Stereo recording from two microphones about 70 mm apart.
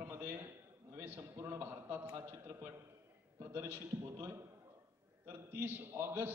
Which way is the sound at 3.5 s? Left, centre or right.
Right.